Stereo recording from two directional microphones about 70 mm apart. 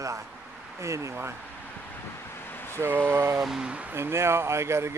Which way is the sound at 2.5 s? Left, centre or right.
Left.